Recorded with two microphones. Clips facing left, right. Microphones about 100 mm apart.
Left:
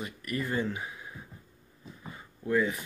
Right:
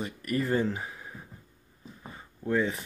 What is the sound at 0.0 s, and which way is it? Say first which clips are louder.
Speech: right 4 dB; 35° right (ahead or behind).